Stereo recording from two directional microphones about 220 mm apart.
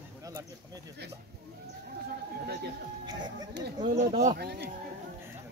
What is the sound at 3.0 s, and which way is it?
Music, 20° right (ahead or behind).